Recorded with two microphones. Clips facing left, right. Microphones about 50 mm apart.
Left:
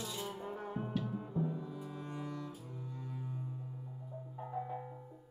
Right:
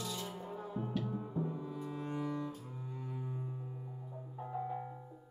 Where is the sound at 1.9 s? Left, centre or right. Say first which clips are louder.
Right 4 dB; right.